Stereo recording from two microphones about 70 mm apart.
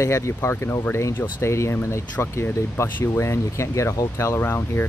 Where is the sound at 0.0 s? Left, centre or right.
Left.